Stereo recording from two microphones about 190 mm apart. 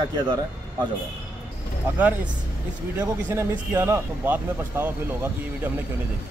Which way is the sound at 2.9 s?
15° right (ahead or behind).